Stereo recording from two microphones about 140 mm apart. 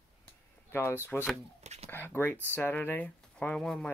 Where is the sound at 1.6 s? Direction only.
50° right (ahead or behind).